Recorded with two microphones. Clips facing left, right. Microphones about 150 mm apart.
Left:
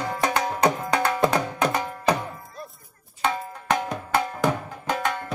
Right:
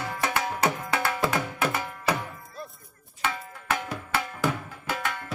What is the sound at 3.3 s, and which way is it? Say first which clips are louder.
Tabla: left 6 dB; 40° left (ahead or behind).